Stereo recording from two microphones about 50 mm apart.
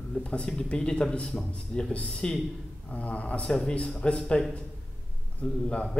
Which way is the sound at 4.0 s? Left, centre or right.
Left.